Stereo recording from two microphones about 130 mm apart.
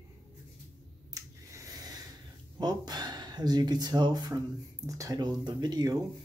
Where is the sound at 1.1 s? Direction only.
25° right (ahead or behind).